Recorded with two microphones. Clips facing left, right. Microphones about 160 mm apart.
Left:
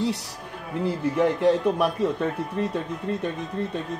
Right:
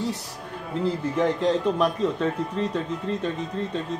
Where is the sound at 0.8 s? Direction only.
10° left (ahead or behind).